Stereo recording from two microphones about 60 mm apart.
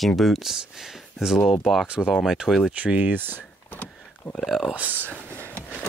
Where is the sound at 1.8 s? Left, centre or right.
Right.